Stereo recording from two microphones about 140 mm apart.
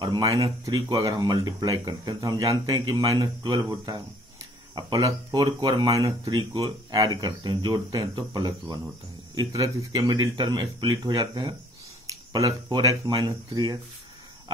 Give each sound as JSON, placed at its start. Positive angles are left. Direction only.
{"t": 0.0, "sound": "speech", "side_deg": -25}